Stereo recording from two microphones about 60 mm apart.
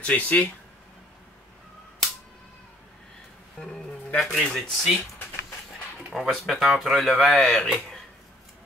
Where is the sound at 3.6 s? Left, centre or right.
Centre.